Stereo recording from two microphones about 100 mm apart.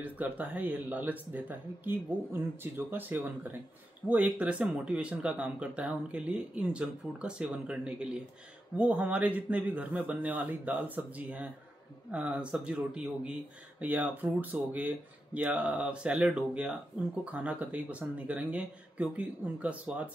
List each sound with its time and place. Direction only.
0.0 s speech: 15° right (ahead or behind)